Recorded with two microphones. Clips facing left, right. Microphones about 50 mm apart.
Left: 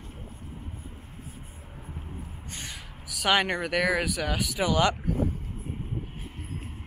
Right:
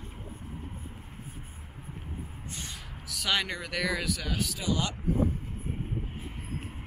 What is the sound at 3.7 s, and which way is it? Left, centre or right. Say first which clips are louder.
Speech: left 5 dB; centre.